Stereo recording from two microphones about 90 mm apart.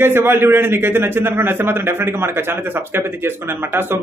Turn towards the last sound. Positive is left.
turn(degrees=-25)  # may be behind; listen again after turning